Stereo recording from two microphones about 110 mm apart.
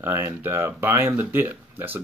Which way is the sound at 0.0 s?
20° right (ahead or behind).